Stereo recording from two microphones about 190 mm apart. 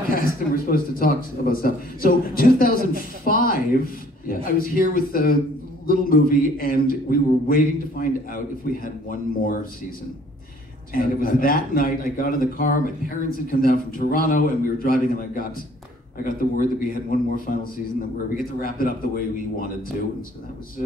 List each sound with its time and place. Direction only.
0.1 s a man's voice: 50° left (ahead or behind)